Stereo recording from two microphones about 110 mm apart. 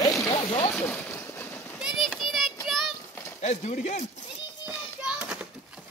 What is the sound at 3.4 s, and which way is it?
Speech, 90° left.